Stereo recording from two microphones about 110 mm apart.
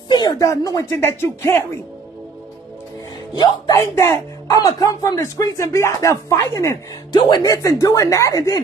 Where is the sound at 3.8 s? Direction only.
25° left (ahead or behind).